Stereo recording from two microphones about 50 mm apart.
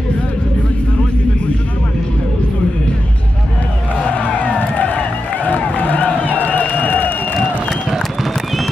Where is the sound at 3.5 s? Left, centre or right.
Left.